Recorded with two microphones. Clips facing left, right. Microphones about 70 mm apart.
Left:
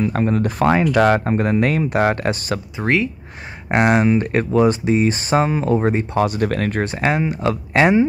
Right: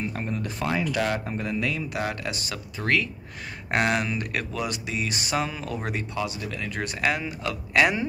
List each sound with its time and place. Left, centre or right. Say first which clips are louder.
0.0 s speech: left 12 dB; left
2.8 s speech: left 5 dB; left
6.1 s speech: left 12 dB; left
6.8 s speech: left 4 dB; left